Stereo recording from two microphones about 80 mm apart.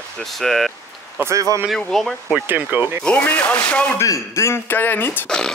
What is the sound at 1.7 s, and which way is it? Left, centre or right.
Speech, centre.